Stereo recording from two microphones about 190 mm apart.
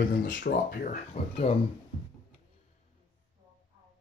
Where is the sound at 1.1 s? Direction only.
35° left (ahead or behind).